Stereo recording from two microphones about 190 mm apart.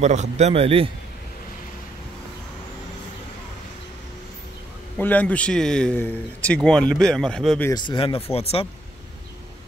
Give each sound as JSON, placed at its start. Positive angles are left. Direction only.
{"t": 0.0, "sound": "a man's voice", "side_deg": -35}
{"t": 4.9, "sound": "a man's voice", "side_deg": 10}
{"t": 7.7, "sound": "speech", "side_deg": 25}